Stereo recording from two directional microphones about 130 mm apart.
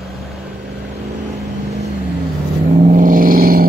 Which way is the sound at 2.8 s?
85° right.